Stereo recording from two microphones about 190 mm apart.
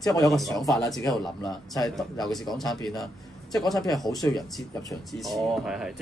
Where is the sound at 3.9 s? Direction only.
Centre (ahead or behind).